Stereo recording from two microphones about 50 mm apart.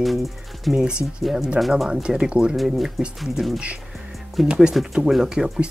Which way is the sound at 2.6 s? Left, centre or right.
Centre.